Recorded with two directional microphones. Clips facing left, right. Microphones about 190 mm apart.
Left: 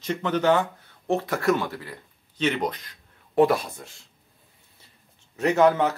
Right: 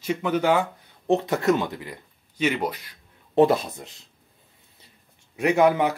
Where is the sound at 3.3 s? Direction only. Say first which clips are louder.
Right 1 dB; 25° right (ahead or behind).